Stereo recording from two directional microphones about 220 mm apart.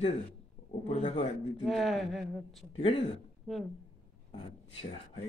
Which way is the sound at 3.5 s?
Centre (ahead or behind).